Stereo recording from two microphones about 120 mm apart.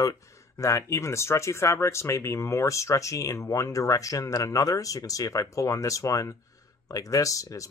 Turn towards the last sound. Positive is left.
turn(degrees=25)  # may be behind; listen again after turning